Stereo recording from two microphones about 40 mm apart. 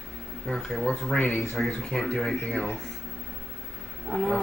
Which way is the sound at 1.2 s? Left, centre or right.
Left.